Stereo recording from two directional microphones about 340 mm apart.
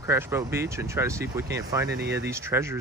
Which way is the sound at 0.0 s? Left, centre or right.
Centre.